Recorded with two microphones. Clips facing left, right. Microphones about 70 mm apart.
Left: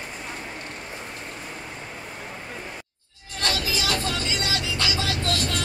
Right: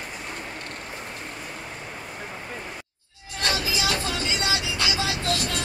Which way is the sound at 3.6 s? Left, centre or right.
Left.